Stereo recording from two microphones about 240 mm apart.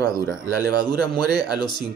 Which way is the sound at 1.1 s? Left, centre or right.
Right.